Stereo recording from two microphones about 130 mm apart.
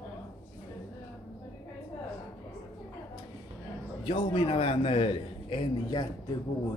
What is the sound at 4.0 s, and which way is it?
A man's voice, 40° left (ahead or behind).